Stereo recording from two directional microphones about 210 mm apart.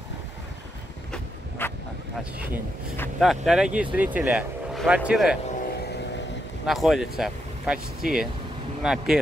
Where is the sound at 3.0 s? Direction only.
Centre (ahead or behind).